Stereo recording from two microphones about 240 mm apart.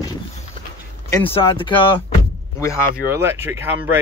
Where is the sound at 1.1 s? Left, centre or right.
Left.